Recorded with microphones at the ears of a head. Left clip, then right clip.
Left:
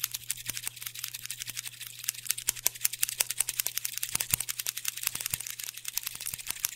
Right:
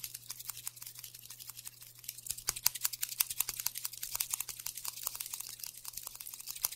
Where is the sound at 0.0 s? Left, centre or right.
Left.